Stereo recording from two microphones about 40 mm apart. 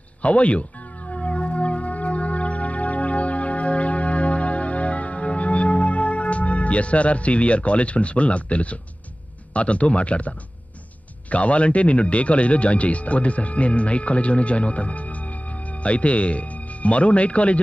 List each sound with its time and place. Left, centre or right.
0.2 s music: left
9.5 s speech: left